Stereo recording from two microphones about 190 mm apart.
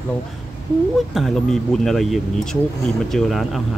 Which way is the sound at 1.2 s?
Centre (ahead or behind).